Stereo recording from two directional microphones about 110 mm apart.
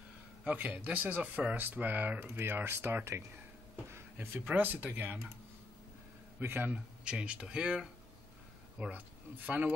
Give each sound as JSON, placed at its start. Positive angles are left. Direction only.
{"t": 0.4, "sound": "speech", "side_deg": -15}
{"t": 6.4, "sound": "speech", "side_deg": -20}